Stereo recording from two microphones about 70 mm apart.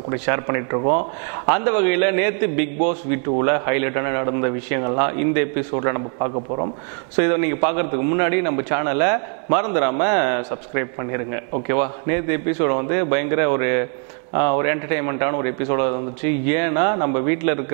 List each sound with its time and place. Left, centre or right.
0.1 s a man's voice: right